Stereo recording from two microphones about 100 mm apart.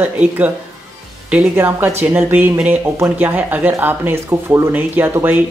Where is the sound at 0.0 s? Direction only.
15° right (ahead or behind).